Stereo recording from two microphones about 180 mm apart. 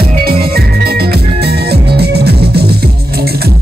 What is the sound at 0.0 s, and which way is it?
Music, 55° right (ahead or behind).